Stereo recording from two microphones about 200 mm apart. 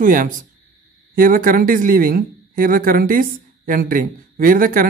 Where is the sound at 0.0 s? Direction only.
40° right (ahead or behind).